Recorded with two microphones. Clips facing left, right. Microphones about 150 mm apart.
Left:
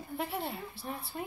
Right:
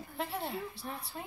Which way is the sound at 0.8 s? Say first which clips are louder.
Left 2 dB; 20° left (ahead or behind).